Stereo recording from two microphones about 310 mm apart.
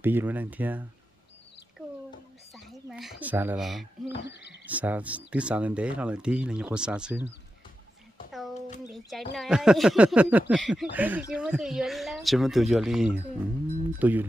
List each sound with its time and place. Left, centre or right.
0.0 s speech: centre
2.5 s speech: centre
4.1 s speech: left
4.6 s speech: centre
8.3 s a sound: centre
8.5 s a sound: left
8.8 s speech: centre